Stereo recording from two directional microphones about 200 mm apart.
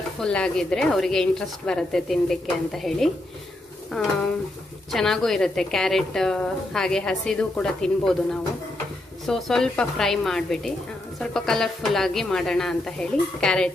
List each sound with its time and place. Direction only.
0.2 s a woman's voice: 5° left (ahead or behind)
4.9 s a woman's voice: centre (ahead or behind)